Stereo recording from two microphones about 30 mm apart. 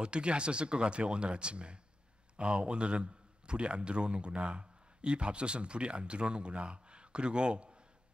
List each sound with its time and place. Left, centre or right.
0.0 s a man's voice: right